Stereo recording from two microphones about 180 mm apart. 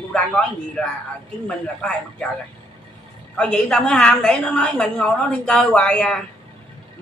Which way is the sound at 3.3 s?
5° left (ahead or behind).